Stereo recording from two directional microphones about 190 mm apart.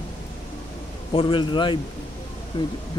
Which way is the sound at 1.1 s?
25° left (ahead or behind).